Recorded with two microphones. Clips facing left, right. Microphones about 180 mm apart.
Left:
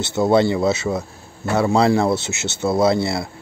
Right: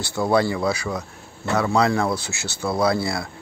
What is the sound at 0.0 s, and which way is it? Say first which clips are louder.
Speech: left 4 dB; 20° left (ahead or behind).